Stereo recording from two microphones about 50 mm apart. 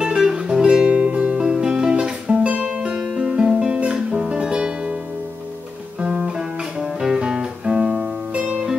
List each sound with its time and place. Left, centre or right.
0.0 s music: centre
1.4 s music: centre
5.9 s music: right